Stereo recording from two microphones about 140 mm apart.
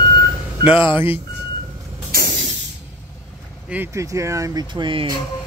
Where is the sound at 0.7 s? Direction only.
35° left (ahead or behind).